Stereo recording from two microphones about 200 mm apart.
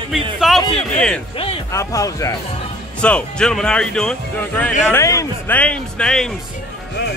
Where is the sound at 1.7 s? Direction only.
15° left (ahead or behind).